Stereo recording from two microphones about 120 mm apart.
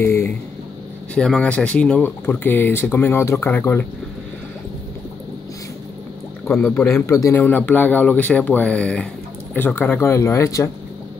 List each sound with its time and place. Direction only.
0.0 s a sound: 20° left (ahead or behind)
1.1 s speech: 10° left (ahead or behind)
6.4 s speech: 10° left (ahead or behind)
6.9 s speech: 25° left (ahead or behind)
7.4 s speech: 15° left (ahead or behind)